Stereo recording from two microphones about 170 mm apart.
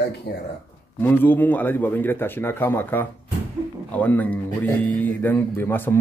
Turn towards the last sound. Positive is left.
turn(degrees=10)  # may be behind; listen again after turning